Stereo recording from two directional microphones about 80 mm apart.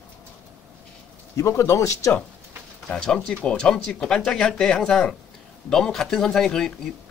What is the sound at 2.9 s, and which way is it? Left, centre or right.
Speech, centre.